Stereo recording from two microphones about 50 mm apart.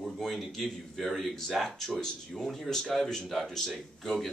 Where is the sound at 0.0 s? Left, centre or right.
Centre.